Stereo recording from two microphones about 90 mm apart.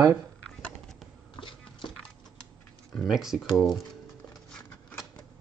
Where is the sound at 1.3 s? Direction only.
65° left (ahead or behind).